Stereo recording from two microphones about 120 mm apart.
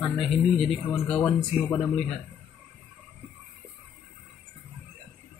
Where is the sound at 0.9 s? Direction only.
20° left (ahead or behind).